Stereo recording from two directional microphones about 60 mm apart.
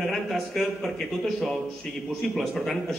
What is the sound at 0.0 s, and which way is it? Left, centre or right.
A man's voice, centre.